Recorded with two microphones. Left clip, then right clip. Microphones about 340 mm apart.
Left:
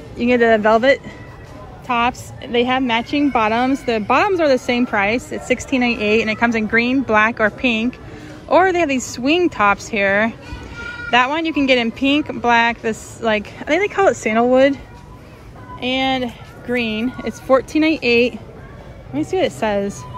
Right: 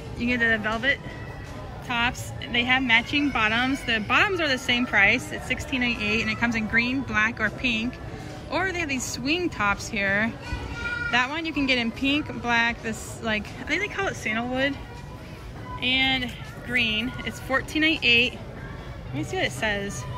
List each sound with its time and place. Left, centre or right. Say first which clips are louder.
0.2 s a woman's voice: left 10 dB; centre
15.8 s speech: left 4 dB; centre